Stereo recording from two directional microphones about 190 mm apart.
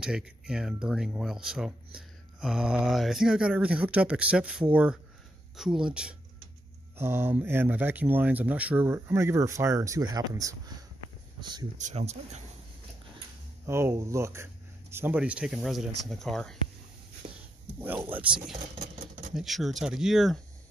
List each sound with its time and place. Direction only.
0.0 s speech: 5° right (ahead or behind)
11.8 s speech: 35° right (ahead or behind)
13.7 s speech: 15° right (ahead or behind); by 16.5 s centre (ahead or behind)
17.7 s speech: 10° right (ahead or behind)